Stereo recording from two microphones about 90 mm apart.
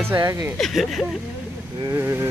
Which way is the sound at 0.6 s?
Centre (ahead or behind).